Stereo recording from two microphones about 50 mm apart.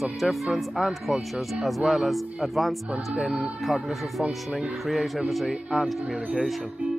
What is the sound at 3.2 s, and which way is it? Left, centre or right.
Speech, right.